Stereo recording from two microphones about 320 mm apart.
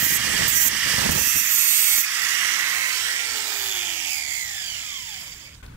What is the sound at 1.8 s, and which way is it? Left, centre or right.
Steam, centre.